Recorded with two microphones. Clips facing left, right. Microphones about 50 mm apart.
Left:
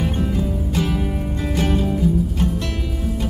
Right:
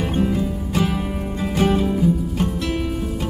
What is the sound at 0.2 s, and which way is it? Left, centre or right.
Music, centre.